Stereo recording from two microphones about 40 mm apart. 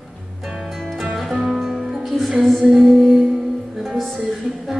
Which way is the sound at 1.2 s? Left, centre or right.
Centre.